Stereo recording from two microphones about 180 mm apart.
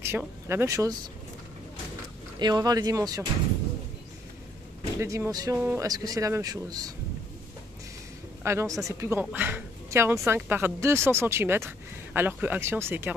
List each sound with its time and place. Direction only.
0.5 s a woman's voice: 15° right (ahead or behind)
2.3 s speech: 25° right (ahead or behind)
4.9 s speech: 15° right (ahead or behind)
8.5 s a woman's voice: 15° right (ahead or behind)